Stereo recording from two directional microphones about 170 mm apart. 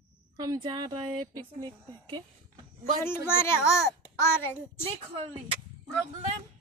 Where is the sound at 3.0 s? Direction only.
15° left (ahead or behind).